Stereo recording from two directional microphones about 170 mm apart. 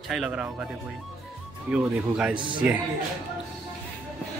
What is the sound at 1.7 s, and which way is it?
Speech, 5° right (ahead or behind).